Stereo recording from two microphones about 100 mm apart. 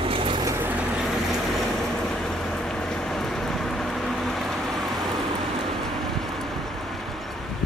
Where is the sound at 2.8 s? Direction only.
5° left (ahead or behind).